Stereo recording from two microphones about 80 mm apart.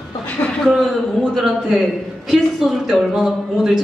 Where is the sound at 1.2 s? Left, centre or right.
Centre.